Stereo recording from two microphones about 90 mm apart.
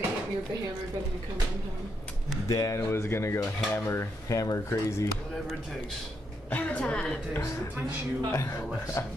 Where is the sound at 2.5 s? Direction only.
40° left (ahead or behind).